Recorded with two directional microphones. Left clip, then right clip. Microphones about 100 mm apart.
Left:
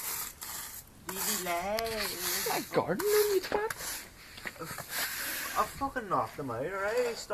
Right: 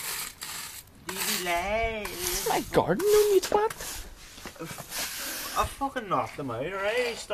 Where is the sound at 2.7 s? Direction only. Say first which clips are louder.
Right 6 dB; 60° right (ahead or behind).